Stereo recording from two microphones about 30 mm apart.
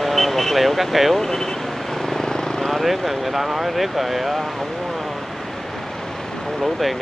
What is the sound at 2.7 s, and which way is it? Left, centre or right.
Speech, centre.